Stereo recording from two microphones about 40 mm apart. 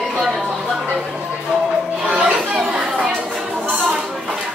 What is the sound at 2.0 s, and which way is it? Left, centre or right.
Chatter, right.